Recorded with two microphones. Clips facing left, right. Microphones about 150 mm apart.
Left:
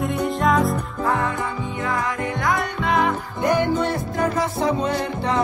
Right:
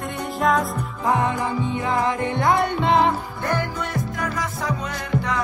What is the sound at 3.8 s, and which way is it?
Music, 30° left (ahead or behind).